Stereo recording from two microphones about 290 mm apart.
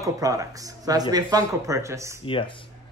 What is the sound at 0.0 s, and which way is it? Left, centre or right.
Speech, centre.